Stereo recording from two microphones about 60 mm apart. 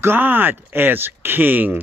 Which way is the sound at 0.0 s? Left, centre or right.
Right.